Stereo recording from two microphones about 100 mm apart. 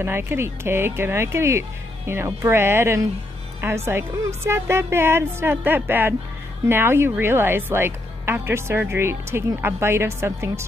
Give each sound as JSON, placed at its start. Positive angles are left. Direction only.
{"t": 0.0, "sound": "speech", "side_deg": -20}